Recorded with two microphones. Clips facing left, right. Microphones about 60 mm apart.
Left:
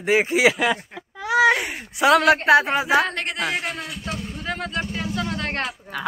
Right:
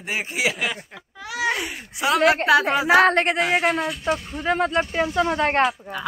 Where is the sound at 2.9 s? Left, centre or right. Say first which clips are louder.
Right 6 dB; right.